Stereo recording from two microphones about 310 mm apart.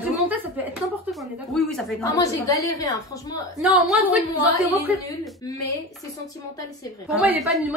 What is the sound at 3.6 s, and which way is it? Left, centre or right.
Speech, centre.